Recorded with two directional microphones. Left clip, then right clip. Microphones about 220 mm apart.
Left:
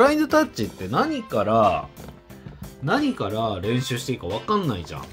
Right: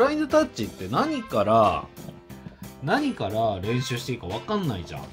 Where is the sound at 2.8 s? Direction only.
Centre (ahead or behind).